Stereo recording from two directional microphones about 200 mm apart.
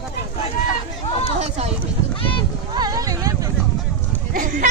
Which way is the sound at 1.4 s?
30° right (ahead or behind).